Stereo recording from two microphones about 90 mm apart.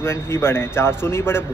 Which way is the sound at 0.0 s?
30° left (ahead or behind).